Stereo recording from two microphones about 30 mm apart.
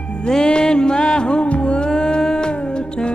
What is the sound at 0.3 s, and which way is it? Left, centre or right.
Music, left.